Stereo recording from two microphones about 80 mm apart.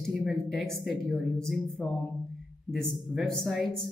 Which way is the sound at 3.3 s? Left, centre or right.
Centre.